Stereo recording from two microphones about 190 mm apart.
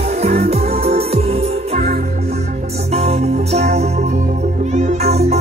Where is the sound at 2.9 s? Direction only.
35° right (ahead or behind).